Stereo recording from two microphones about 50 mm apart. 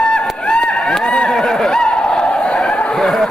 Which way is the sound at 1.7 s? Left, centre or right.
Centre.